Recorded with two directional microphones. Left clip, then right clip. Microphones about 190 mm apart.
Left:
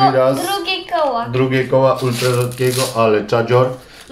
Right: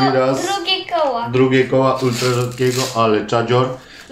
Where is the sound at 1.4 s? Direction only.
Centre (ahead or behind).